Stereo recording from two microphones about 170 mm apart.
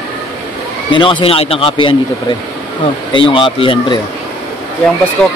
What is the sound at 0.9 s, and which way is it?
Speech, 30° left (ahead or behind).